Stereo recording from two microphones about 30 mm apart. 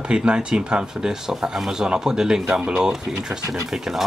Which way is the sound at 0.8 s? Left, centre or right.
Right.